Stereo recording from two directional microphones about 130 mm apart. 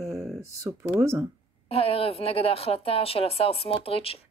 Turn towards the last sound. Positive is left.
turn(degrees=50)  # may be behind; listen again after turning